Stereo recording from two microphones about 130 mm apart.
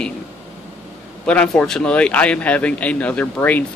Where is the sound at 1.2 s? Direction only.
5° left (ahead or behind).